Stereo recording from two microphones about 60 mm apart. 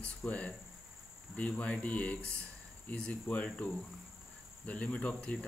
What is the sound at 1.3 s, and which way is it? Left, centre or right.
Speech, left.